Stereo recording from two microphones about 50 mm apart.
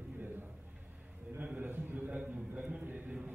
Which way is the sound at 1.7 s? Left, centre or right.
Right.